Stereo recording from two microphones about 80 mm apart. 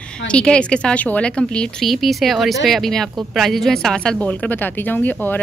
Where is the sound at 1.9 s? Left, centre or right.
Centre.